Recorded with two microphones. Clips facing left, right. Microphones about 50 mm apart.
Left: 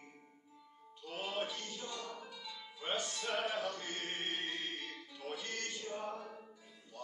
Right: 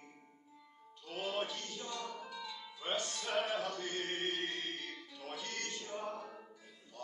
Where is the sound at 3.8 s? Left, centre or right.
Centre.